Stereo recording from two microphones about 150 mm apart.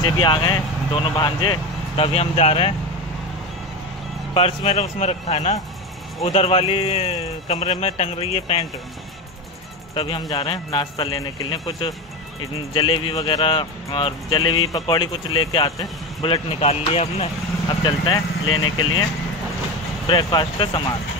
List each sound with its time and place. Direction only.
0.0 s speech: 30° left (ahead or behind)
4.3 s speech: 35° left (ahead or behind)
9.9 s speech: 35° left (ahead or behind)
20.1 s speech: 30° left (ahead or behind)